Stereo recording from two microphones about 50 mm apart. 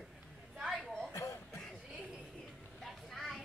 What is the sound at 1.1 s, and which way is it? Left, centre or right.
Music, left.